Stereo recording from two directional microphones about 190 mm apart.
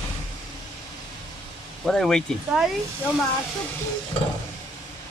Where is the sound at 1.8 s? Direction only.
Centre (ahead or behind).